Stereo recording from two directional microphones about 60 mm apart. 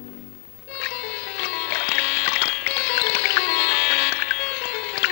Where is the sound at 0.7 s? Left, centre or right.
Left.